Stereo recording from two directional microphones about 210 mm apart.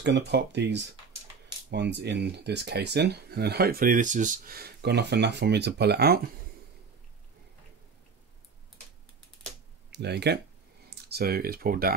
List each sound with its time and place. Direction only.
0.0 s speech: 55° right (ahead or behind)
9.8 s speech: 55° right (ahead or behind)